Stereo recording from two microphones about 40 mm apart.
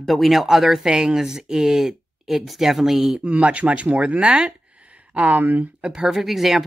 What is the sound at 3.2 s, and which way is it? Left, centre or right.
Speech, right.